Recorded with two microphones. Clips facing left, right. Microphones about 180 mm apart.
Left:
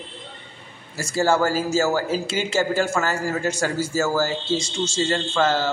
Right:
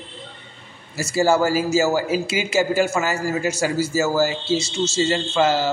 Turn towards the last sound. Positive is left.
turn(degrees=-10)  # may be behind; listen again after turning